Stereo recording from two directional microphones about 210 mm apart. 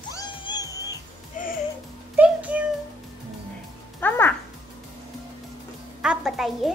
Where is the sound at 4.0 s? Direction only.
10° left (ahead or behind).